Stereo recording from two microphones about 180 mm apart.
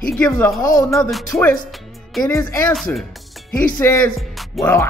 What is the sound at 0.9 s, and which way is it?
Speech, centre (ahead or behind).